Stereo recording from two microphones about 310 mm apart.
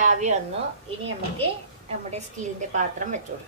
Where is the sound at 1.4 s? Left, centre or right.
Centre.